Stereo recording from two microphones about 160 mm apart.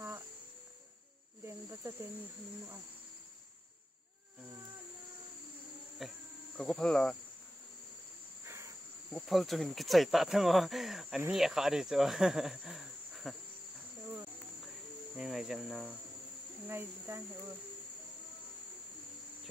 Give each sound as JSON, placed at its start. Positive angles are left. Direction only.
{"t": 1.4, "sound": "cricket", "side_deg": -15}
{"t": 5.9, "sound": "cricket", "side_deg": 0}
{"t": 8.5, "sound": "cricket", "side_deg": -15}
{"t": 9.1, "sound": "speech", "side_deg": 0}
{"t": 15.1, "sound": "speech", "side_deg": 0}
{"t": 16.6, "sound": "speech", "side_deg": -15}